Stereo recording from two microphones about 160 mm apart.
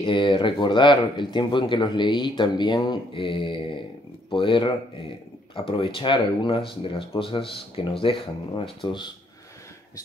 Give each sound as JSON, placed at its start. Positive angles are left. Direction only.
{"t": 0.0, "sound": "speech", "side_deg": 35}